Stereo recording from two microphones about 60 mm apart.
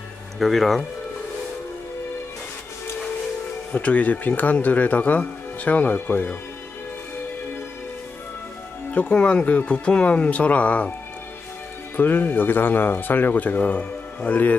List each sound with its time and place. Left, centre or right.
0.4 s speech: centre
3.7 s speech: left
8.9 s speech: centre
12.0 s speech: left